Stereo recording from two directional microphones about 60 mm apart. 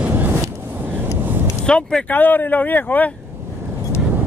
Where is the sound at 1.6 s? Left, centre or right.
Centre.